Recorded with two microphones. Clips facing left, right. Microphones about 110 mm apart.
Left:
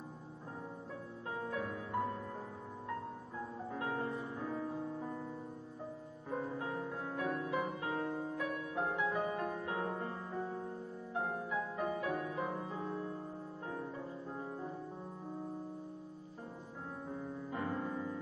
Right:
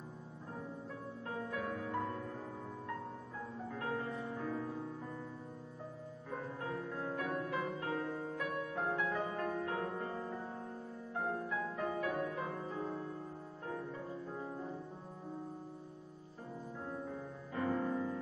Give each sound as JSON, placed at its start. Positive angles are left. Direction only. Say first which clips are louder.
{"t": 3.7, "sound": "music", "louder": "left 1 dB", "side_deg": 15}
{"t": 6.9, "sound": "music", "louder": "even", "side_deg": 15}
{"t": 11.1, "sound": "music", "louder": "even", "side_deg": 15}
{"t": 17.5, "sound": "music", "louder": "right 4 dB", "side_deg": 15}